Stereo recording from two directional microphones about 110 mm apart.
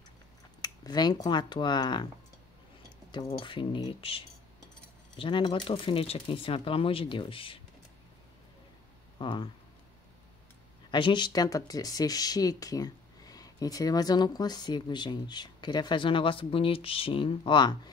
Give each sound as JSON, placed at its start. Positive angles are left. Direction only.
{"t": 0.6, "sound": "speech", "side_deg": 40}
{"t": 3.3, "sound": "speech", "side_deg": 50}
{"t": 9.2, "sound": "speech", "side_deg": 50}
{"t": 10.9, "sound": "speech", "side_deg": 45}